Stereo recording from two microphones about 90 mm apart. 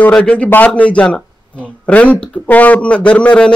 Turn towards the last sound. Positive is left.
turn(degrees=10)  # may be behind; listen again after turning